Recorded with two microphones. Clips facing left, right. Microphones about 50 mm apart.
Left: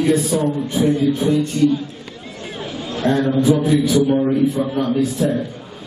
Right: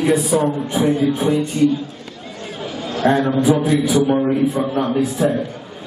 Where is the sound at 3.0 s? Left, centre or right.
Right.